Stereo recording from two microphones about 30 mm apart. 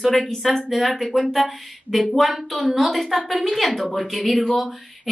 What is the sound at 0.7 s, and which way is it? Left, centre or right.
Speech, centre.